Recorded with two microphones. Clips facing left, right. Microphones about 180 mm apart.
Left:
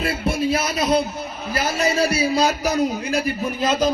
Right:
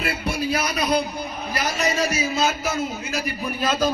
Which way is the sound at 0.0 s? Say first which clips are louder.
Left 4 dB; 30° left (ahead or behind).